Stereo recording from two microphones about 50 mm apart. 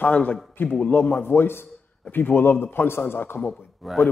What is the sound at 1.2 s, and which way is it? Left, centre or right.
Speech, left.